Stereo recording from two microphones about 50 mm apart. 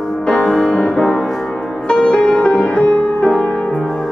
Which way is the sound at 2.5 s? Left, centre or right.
Left.